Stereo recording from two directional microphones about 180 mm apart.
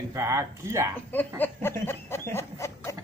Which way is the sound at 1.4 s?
10° left (ahead or behind).